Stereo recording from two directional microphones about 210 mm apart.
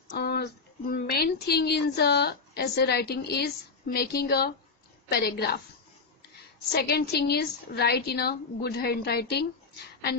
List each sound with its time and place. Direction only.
0.2 s speech: 50° left (ahead or behind)
6.7 s speech: 50° left (ahead or behind)